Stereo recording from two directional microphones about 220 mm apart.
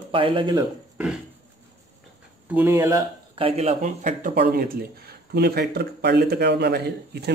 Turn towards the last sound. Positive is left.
turn(degrees=-50)  # may be behind; listen again after turning